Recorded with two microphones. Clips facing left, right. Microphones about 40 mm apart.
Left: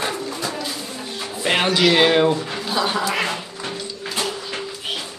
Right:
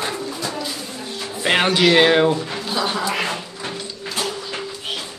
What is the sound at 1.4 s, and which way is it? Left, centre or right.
Speech, centre.